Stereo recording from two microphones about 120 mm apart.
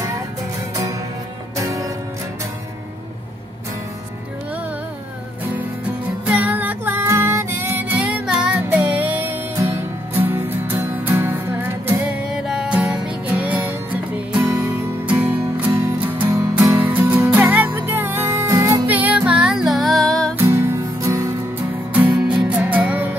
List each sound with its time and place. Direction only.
1.6 s music: 25° right (ahead or behind)
5.9 s music: 15° right (ahead or behind)
12.2 s music: 5° right (ahead or behind)
16.6 s music: 15° right (ahead or behind)
18.9 s music: 15° right (ahead or behind); by 20.3 s 5° left (ahead or behind)
20.3 s music: 20° right (ahead or behind)
21.9 s music: 10° right (ahead or behind)